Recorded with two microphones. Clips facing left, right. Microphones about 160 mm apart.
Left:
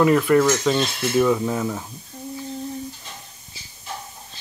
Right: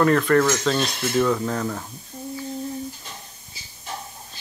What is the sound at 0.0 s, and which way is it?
Speech, 10° left (ahead or behind).